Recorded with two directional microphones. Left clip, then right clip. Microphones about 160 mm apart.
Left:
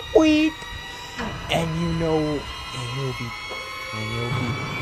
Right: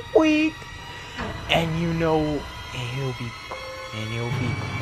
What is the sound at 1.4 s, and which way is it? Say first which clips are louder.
Music: right 2 dB; 10° left (ahead or behind).